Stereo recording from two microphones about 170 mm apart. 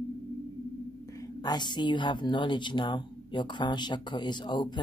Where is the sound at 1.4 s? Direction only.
25° left (ahead or behind).